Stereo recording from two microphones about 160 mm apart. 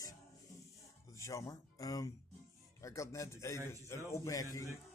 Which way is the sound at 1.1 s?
20° left (ahead or behind).